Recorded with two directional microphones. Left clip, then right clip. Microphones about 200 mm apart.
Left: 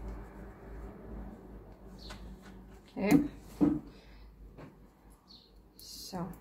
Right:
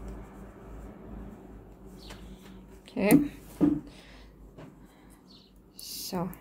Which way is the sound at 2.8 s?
50° right (ahead or behind).